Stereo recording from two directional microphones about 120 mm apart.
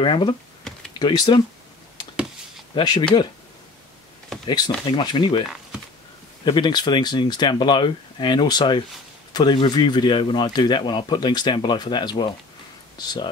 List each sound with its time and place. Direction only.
0.0 s speech: 45° left (ahead or behind)
2.7 s speech: 35° left (ahead or behind)
4.5 s speech: 35° left (ahead or behind)
6.4 s speech: 40° left (ahead or behind)